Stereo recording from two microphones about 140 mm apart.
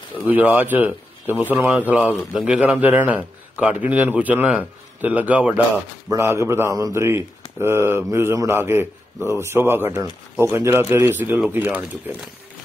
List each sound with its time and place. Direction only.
0.3 s speech: 10° right (ahead or behind)